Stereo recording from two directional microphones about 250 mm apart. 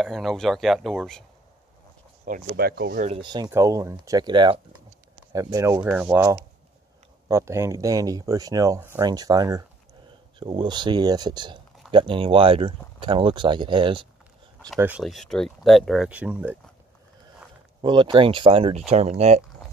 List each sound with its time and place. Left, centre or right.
0.0 s speech: centre
2.4 s speech: right
3.1 s speech: centre
14.8 s speech: centre
17.8 s speech: centre